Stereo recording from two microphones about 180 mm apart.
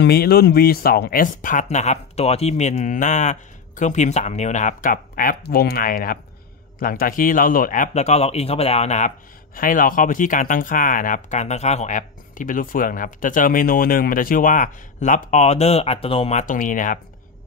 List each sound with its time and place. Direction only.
0.0 s speech: 60° left (ahead or behind); by 9.1 s 40° left (ahead or behind)
9.6 s speech: 50° left (ahead or behind)